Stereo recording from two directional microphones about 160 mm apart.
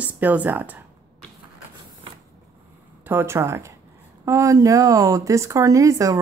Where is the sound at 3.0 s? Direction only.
15° right (ahead or behind).